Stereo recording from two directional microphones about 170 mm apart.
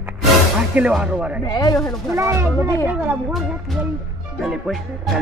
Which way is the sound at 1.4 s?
20° left (ahead or behind).